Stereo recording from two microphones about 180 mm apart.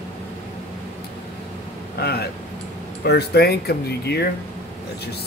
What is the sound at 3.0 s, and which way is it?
Speech, 65° left (ahead or behind).